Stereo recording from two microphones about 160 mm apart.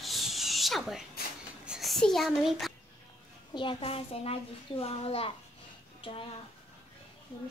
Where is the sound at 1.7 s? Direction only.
Centre (ahead or behind).